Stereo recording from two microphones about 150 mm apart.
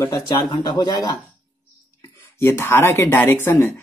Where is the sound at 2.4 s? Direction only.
15° left (ahead or behind).